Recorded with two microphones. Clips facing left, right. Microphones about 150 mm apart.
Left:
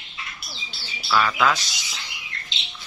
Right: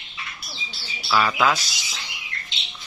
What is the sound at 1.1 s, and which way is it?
Speech, 5° right (ahead or behind).